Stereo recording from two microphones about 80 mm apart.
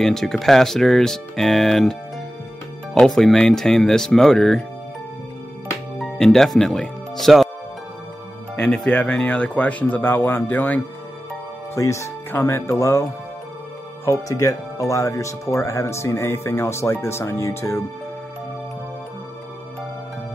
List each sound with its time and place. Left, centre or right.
0.0 s speech: centre
5.9 s speech: centre
8.6 s a man's voice: centre
11.7 s speech: left